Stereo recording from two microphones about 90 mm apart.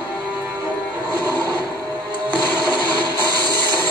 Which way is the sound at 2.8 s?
50° right (ahead or behind).